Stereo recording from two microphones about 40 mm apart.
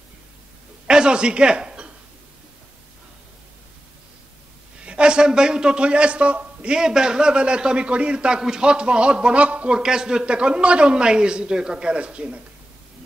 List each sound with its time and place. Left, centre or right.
0.8 s a sound: right
4.8 s a man's voice: right
6.8 s speech: centre; by 9.8 s right
9.8 s speech: centre